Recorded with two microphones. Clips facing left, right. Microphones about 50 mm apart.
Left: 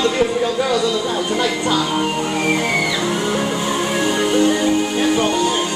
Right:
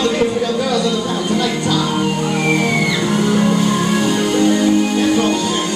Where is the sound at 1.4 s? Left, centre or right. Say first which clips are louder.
Right 1 dB; centre.